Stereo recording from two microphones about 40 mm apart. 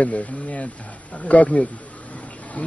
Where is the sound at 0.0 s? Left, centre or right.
Left.